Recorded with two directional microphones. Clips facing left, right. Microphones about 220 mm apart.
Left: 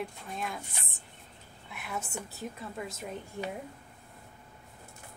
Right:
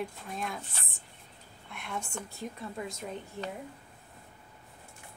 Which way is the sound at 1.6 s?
5° left (ahead or behind).